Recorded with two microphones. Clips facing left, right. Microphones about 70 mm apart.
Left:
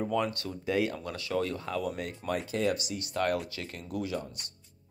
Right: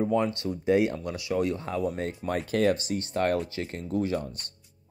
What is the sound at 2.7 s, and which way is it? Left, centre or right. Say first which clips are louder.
Speech: right 5 dB; right.